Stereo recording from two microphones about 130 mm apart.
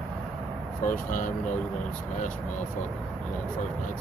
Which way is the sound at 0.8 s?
90° left.